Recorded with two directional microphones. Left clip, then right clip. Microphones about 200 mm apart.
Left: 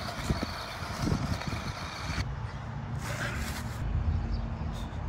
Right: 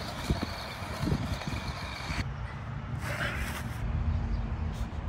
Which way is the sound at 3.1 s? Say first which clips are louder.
Right 2 dB; 5° left (ahead or behind).